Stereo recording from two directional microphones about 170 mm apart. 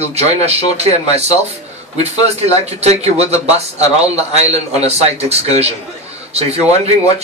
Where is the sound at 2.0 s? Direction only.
40° right (ahead or behind).